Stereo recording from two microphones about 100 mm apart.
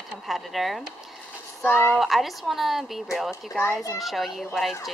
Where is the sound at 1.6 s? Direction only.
20° left (ahead or behind).